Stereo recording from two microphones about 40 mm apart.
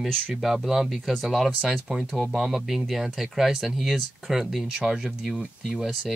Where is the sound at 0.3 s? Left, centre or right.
Centre.